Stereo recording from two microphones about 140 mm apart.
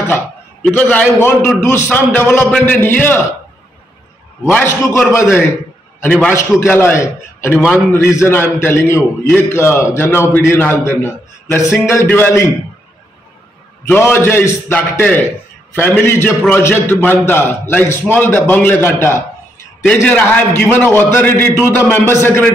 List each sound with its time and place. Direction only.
0.1 s a man's voice: 10° left (ahead or behind)
4.5 s a man's voice: 15° left (ahead or behind)
13.8 s a man's voice: 15° left (ahead or behind)